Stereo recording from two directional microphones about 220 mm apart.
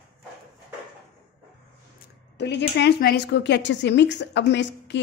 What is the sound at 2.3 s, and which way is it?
Speech, 50° left (ahead or behind).